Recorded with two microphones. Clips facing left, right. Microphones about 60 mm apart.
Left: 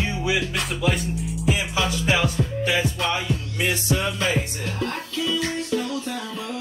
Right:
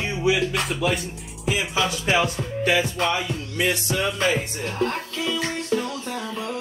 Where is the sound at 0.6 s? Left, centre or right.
Centre.